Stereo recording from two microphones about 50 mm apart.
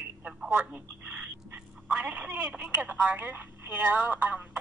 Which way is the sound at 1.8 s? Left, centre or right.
Right.